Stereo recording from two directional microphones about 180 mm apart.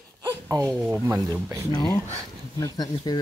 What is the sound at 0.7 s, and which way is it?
Speech, 10° right (ahead or behind).